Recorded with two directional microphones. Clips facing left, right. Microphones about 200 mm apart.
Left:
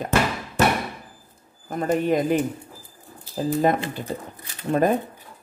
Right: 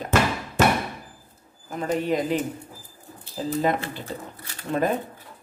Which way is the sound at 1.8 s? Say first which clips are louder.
Left 3 dB; 45° left (ahead or behind).